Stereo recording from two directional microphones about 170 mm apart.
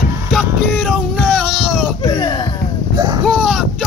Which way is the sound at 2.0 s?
25° left (ahead or behind).